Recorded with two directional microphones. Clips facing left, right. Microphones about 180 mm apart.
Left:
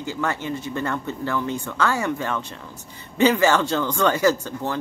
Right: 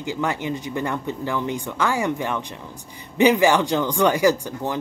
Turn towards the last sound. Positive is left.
turn(degrees=-15)  # may be behind; listen again after turning